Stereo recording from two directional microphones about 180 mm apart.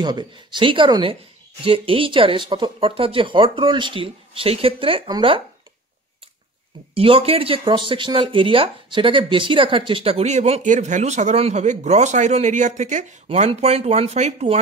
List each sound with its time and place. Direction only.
0.0 s speech: 25° right (ahead or behind)
7.0 s speech: 35° right (ahead or behind)